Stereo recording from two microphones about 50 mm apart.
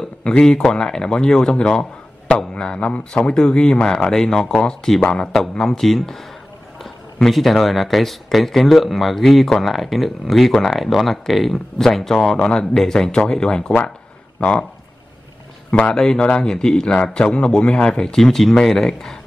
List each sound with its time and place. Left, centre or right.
0.2 s speech: centre
15.7 s speech: centre